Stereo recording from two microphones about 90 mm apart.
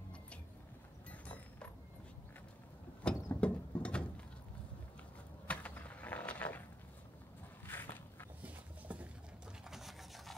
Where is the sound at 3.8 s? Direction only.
10° left (ahead or behind).